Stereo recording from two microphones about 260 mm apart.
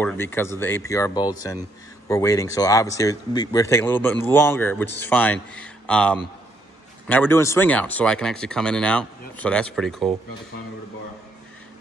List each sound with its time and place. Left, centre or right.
0.0 s speech: centre